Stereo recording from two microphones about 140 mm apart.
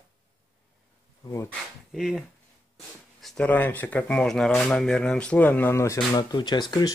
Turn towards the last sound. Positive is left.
turn(degrees=30)  # may be behind; listen again after turning